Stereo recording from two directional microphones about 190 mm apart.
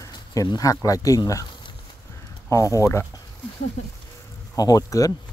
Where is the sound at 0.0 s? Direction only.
20° left (ahead or behind).